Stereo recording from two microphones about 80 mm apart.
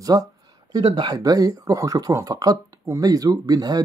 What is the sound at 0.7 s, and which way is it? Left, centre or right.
Speech, right.